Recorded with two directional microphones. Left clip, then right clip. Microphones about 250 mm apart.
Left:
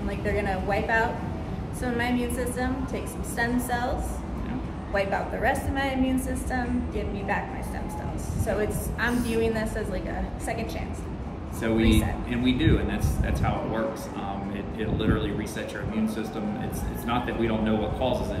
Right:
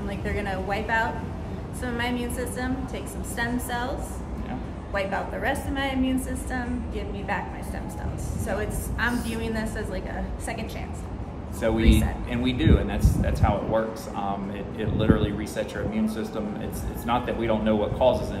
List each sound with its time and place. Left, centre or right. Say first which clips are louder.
0.2 s a woman's voice: left 3 dB; centre
4.9 s a woman's voice: left 1 dB; centre
8.5 s a woman's voice: even; centre
11.6 s speech: even; centre